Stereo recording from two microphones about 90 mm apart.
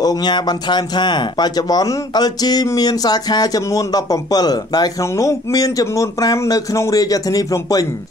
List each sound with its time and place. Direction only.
0.0 s speech: 50° left (ahead or behind)